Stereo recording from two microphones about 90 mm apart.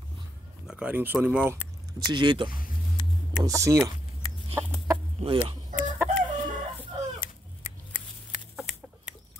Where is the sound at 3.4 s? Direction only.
35° right (ahead or behind).